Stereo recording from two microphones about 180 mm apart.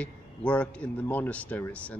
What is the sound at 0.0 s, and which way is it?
Speech, 5° left (ahead or behind).